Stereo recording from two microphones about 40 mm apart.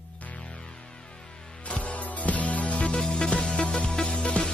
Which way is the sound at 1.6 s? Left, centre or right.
Left.